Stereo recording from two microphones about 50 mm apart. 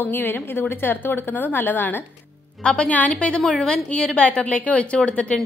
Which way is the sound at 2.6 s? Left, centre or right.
Centre.